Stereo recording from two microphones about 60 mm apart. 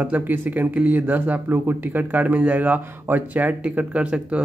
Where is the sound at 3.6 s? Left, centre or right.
Centre.